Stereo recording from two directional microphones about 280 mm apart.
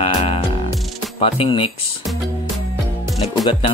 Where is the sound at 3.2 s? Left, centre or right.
Centre.